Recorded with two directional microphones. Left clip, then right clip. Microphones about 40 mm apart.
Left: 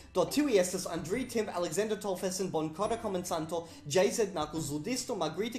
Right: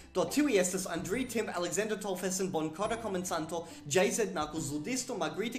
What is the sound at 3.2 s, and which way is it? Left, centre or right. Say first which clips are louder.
Speech: left 1 dB; left.